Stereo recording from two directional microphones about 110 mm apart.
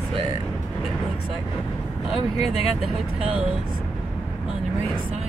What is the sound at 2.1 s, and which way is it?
Speech, centre (ahead or behind).